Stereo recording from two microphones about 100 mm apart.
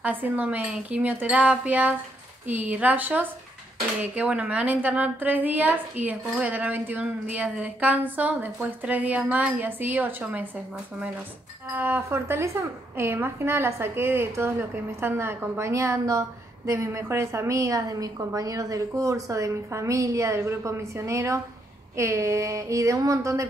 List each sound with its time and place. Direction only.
0.0 s a woman's voice: 15° right (ahead or behind); by 23.4 s 30° right (ahead or behind)